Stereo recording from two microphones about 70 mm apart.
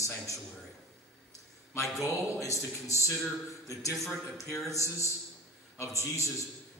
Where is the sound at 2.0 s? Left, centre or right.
Left.